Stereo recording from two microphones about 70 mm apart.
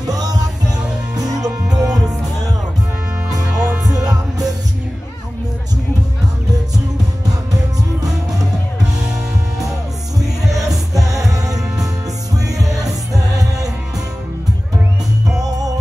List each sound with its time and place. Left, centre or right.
0.1 s music: right
3.3 s music: right
10.7 s music: right